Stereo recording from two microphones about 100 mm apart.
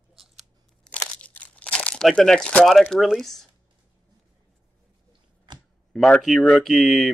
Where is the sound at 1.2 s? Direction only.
15° left (ahead or behind).